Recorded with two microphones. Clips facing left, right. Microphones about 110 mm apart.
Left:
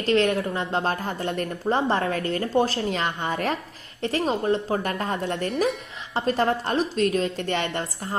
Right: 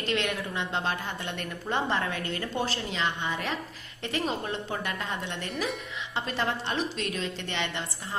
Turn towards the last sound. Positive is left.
turn(degrees=45)  # may be behind; listen again after turning